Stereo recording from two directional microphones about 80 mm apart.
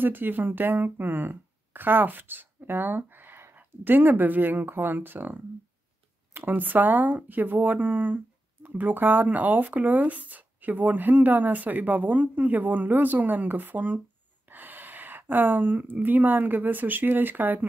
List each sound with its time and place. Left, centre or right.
0.0 s speech: right